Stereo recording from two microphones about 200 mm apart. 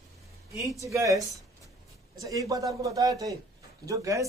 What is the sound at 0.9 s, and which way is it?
A man's voice, 15° right (ahead or behind).